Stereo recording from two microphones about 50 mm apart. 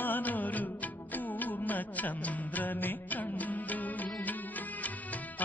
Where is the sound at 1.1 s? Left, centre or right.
Left.